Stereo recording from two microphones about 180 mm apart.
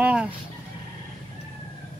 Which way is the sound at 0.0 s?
5° right (ahead or behind).